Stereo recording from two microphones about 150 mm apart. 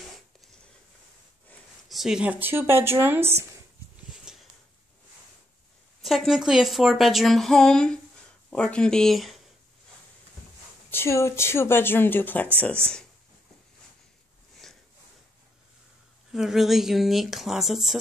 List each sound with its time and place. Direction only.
1.9 s speech: centre (ahead or behind)
4.1 s a sound: 5° right (ahead or behind)
6.0 s speech: centre (ahead or behind)
10.9 s speech: 15° left (ahead or behind)
14.6 s a sound: 5° left (ahead or behind)
16.3 s speech: 5° right (ahead or behind)